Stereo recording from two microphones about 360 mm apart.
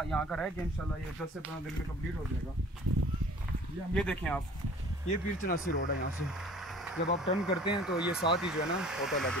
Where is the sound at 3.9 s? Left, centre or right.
Centre.